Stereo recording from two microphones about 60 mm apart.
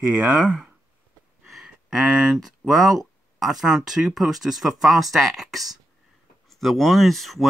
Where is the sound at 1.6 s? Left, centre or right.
Centre.